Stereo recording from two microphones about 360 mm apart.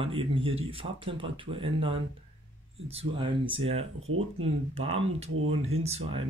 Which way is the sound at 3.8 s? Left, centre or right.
Right.